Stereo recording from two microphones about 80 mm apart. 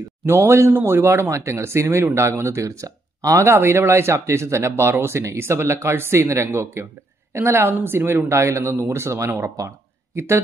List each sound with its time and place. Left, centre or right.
0.2 s speech: right